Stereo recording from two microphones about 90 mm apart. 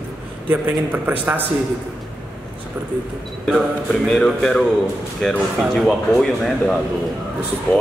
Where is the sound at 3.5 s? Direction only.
Centre (ahead or behind).